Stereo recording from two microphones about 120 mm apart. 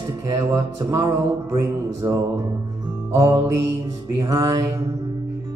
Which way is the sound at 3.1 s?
25° right (ahead or behind).